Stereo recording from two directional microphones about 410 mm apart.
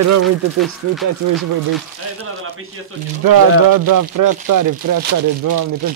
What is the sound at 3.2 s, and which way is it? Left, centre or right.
Speech, right.